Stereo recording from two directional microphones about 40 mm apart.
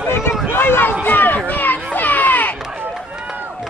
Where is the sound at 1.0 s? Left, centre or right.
Left.